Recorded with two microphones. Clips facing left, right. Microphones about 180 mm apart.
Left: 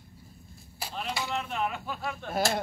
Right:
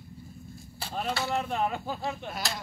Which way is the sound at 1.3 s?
35° right (ahead or behind).